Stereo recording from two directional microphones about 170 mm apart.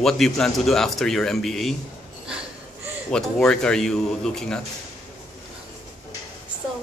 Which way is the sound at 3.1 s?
5° left (ahead or behind).